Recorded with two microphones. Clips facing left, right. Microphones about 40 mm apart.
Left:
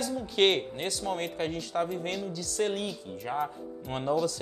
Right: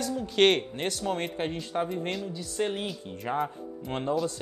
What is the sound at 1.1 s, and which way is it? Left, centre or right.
Speech, right.